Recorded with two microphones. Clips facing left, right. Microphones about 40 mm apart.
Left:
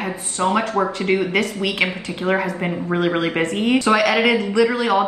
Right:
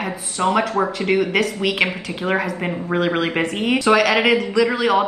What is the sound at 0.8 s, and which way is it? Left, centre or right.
Speech, centre.